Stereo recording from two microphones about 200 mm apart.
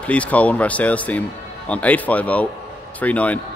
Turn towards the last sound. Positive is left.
turn(degrees=5)  # may be behind; listen again after turning